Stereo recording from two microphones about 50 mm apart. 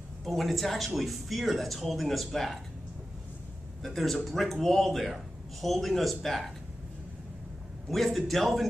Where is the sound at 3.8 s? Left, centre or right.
Centre.